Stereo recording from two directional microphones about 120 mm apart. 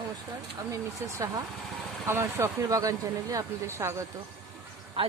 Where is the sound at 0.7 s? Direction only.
25° right (ahead or behind).